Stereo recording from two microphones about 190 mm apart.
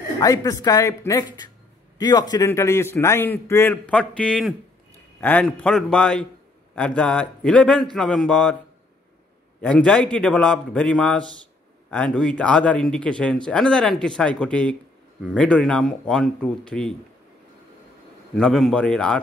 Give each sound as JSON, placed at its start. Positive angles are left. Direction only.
{"t": 0.2, "sound": "a man's voice", "side_deg": 20}
{"t": 9.6, "sound": "speech", "side_deg": 5}
{"t": 18.3, "sound": "speech", "side_deg": 0}